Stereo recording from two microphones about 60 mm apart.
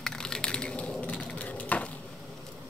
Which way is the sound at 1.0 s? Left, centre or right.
Left.